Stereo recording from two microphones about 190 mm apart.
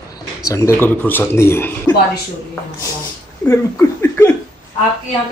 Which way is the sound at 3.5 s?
15° left (ahead or behind).